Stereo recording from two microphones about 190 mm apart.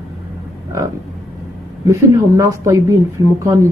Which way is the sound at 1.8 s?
15° right (ahead or behind).